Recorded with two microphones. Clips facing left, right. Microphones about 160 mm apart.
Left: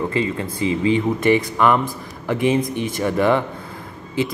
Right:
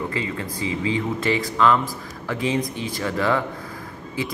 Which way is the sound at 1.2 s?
20° left (ahead or behind).